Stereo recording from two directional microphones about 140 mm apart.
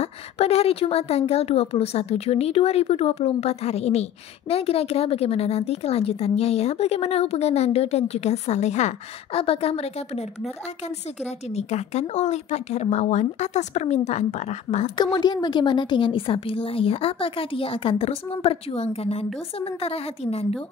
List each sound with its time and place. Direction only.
0.0 s a woman's voice: 45° left (ahead or behind)
9.4 s a woman's voice: 45° left (ahead or behind)
11.2 s a woman's voice: 50° left (ahead or behind)
15.0 s a woman's voice: 30° left (ahead or behind)